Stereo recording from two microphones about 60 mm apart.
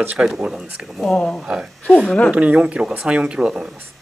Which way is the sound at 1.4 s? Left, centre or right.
Centre.